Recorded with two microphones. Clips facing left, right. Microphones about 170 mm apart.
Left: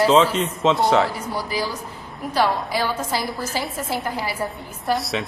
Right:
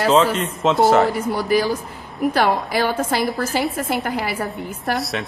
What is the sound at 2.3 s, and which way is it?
A woman's voice, 60° right (ahead or behind).